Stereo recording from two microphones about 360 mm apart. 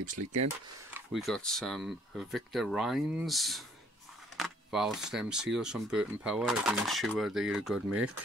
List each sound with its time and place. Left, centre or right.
0.2 s speech: right
0.9 s speech: centre